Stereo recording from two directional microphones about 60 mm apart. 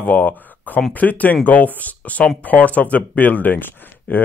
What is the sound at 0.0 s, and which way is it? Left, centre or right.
Speech, left.